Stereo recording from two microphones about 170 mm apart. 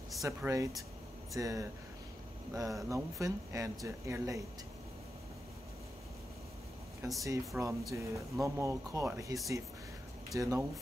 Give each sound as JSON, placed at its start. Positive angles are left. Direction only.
{"t": 0.2, "sound": "speech", "side_deg": -20}
{"t": 7.2, "sound": "speech", "side_deg": -20}
{"t": 10.4, "sound": "speech", "side_deg": -20}